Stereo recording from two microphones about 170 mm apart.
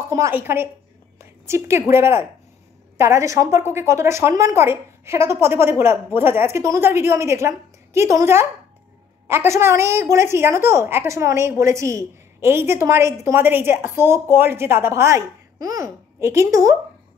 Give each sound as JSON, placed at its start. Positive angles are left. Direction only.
{"t": 0.1, "sound": "a woman's voice", "side_deg": -15}